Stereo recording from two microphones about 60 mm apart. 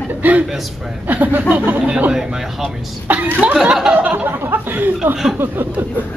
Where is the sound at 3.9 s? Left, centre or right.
Right.